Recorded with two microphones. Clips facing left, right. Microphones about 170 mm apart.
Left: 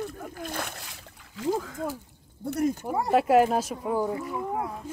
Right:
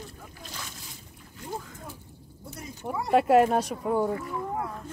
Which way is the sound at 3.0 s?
Centre (ahead or behind).